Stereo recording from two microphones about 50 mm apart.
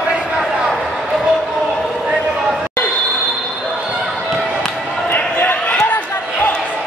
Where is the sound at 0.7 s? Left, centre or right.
Centre.